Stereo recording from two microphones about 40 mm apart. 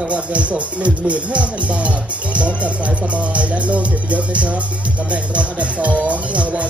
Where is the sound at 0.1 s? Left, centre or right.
Right.